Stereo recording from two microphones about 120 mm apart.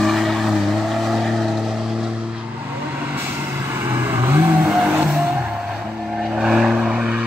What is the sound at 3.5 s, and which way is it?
Vehicle, 20° right (ahead or behind).